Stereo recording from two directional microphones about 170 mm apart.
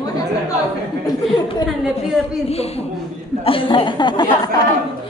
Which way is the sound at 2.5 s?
35° left (ahead or behind).